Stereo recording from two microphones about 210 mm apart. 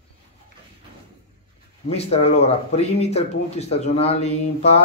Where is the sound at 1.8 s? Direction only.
30° left (ahead or behind).